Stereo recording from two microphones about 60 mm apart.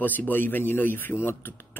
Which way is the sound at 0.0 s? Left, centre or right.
Left.